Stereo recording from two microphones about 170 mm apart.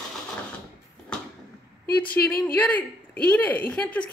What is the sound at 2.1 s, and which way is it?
Speech, 10° left (ahead or behind).